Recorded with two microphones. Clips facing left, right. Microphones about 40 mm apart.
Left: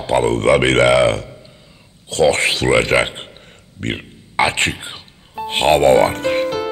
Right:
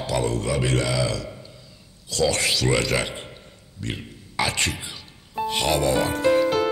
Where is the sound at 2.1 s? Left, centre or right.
Left.